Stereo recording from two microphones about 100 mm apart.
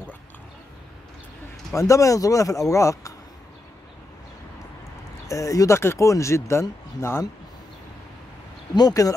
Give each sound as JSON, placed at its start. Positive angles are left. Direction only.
{"t": 1.8, "sound": "speech", "side_deg": 30}
{"t": 5.3, "sound": "speech", "side_deg": 35}
{"t": 8.7, "sound": "speech", "side_deg": 35}